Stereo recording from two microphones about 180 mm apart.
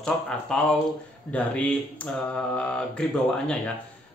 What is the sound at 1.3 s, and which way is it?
Mantra, 5° left (ahead or behind).